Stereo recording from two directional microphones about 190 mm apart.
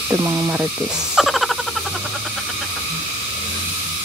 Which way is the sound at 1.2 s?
Centre (ahead or behind).